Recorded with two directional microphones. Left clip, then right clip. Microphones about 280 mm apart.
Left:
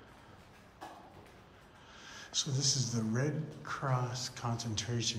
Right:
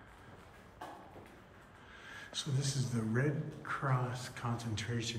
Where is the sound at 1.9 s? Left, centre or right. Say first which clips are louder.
Left 2 dB; centre.